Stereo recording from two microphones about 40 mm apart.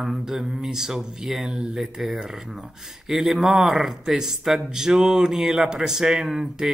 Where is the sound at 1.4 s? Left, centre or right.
Centre.